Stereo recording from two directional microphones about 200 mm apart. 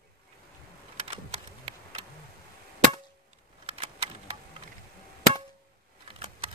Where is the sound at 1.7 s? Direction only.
30° right (ahead or behind).